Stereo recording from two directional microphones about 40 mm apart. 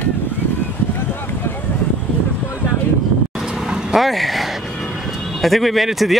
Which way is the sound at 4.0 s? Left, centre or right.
Centre.